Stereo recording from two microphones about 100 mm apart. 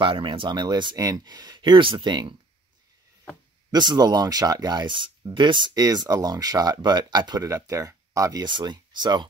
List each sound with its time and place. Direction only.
0.0 s speech: 55° right (ahead or behind)
3.7 s speech: 45° right (ahead or behind)
5.8 s speech: 40° right (ahead or behind)
7.4 s speech: 30° right (ahead or behind)
8.4 s speech: 50° right (ahead or behind)